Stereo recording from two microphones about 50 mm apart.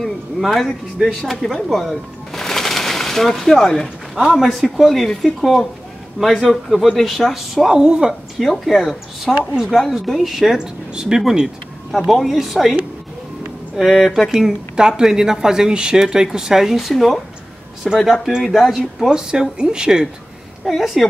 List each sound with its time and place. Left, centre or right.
0.4 s speech: centre
7.7 s speech: centre
8.1 s a woman's voice: centre
13.7 s speech: centre
14.3 s speech: centre
19.0 s speech: centre
20.6 s speech: centre